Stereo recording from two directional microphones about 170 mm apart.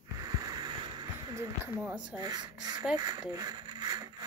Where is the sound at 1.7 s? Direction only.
10° right (ahead or behind).